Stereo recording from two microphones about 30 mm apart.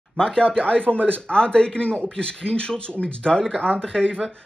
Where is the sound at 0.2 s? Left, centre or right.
Left.